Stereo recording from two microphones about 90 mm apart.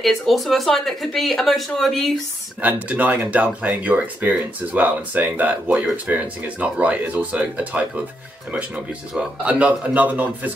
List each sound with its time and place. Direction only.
0.0 s speech: centre (ahead or behind)
2.6 s speech: 15° right (ahead or behind)
9.5 s speech: 15° right (ahead or behind)